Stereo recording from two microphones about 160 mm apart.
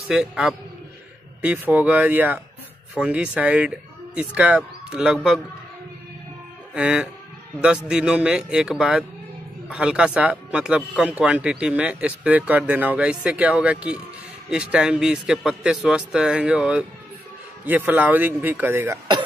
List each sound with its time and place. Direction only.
0.1 s a man's voice: 5° right (ahead or behind)
6.7 s a man's voice: 5° right (ahead or behind)